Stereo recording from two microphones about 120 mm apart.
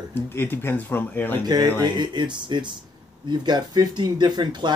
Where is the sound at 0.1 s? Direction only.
20° left (ahead or behind).